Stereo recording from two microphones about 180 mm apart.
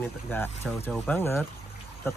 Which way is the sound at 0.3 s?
10° left (ahead or behind).